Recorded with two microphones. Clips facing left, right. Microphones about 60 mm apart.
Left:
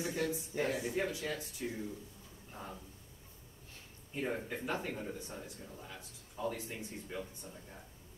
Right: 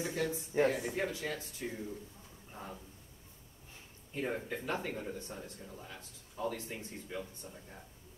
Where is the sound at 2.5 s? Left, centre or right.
Centre.